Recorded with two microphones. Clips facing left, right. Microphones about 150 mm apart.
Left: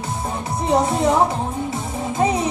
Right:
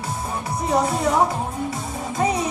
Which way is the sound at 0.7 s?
20° left (ahead or behind).